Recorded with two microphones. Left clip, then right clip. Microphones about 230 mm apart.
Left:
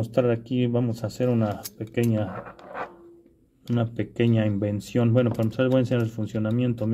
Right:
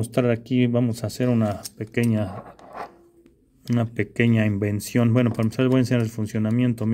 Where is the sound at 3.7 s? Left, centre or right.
Right.